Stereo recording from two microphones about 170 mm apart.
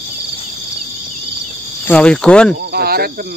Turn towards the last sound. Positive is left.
turn(degrees=-60)  # may be behind; listen again after turning